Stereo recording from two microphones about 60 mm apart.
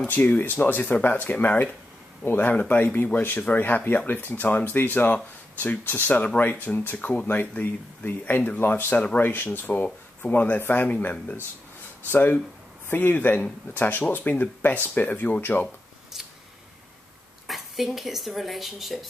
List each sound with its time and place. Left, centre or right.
0.1 s speech: left
17.5 s speech: centre